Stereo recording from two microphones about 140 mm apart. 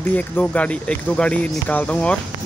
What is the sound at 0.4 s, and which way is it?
Speech, 10° left (ahead or behind).